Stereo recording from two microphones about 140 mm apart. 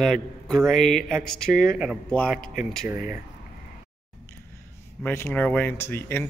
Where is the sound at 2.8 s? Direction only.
15° right (ahead or behind).